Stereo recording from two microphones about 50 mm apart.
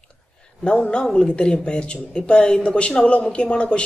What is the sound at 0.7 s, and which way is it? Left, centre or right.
Speech, centre.